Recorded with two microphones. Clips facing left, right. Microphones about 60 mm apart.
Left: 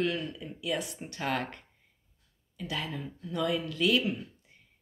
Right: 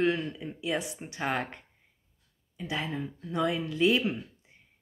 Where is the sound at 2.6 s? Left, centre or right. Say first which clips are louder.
Right 3 dB; right.